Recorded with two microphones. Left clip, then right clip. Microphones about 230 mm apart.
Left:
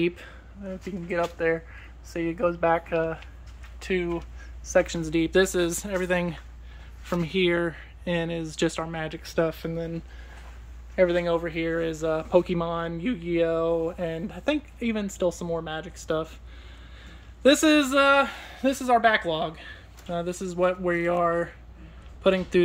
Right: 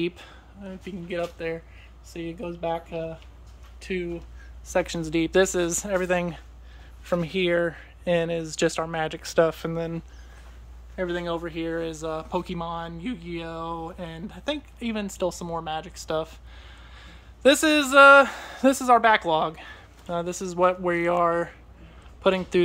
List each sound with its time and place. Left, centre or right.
0.0 s speech: centre
2.4 s speech: left
3.8 s speech: centre
11.0 s speech: centre